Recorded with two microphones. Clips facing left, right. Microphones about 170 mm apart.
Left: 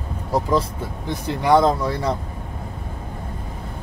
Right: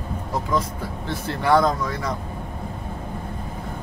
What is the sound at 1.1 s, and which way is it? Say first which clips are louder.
Speech: left 3 dB; 15° left (ahead or behind).